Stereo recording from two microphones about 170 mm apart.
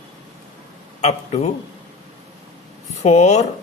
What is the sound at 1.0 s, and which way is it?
Speech, 40° left (ahead or behind).